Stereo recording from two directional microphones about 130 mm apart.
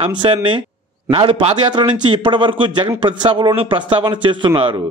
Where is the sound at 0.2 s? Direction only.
40° right (ahead or behind).